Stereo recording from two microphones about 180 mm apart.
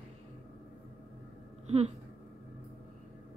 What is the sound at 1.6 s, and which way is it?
Speech, 35° right (ahead or behind).